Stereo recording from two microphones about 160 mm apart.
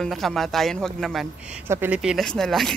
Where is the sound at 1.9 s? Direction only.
Centre (ahead or behind).